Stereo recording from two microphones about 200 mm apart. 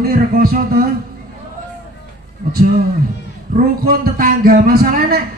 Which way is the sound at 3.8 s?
45° right (ahead or behind).